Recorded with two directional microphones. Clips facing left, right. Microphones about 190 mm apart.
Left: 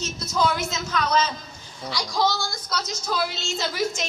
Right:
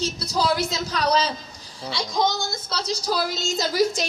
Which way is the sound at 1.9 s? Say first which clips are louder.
Right 1 dB; 20° right (ahead or behind).